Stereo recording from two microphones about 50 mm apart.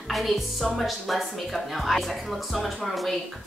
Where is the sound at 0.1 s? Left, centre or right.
Centre.